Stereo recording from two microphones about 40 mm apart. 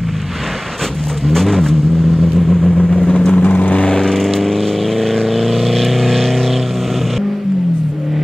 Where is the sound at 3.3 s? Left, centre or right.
Left.